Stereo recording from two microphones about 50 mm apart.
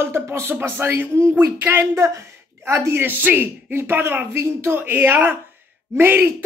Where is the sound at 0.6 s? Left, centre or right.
Right.